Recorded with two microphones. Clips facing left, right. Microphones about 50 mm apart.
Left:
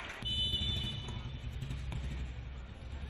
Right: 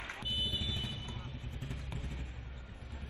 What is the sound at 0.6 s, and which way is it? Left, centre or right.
Vehicle, right.